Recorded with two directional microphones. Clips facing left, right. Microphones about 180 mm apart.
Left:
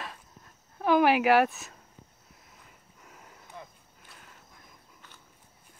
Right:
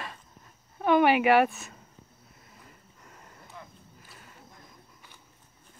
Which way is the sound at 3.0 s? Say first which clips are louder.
Left 1 dB; 5° left (ahead or behind).